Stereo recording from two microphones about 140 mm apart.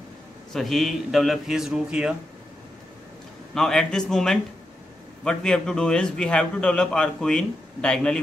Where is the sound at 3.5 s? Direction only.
5° left (ahead or behind).